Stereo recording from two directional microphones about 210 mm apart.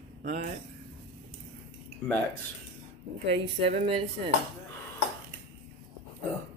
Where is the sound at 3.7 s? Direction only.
30° right (ahead or behind).